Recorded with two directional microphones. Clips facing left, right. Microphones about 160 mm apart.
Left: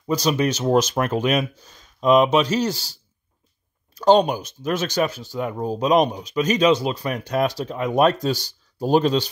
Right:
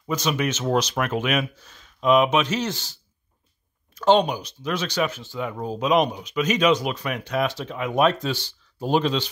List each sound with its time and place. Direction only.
0.1 s speech: 35° left (ahead or behind)